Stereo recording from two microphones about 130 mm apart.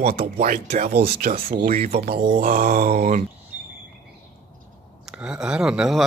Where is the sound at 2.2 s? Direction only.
90° right.